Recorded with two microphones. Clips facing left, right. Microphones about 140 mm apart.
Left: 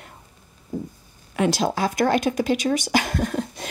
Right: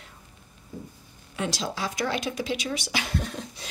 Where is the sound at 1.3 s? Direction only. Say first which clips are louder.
Left 9 dB; 60° left (ahead or behind).